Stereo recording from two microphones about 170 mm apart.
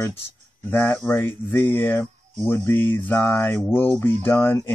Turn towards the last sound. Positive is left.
turn(degrees=15)  # may be behind; listen again after turning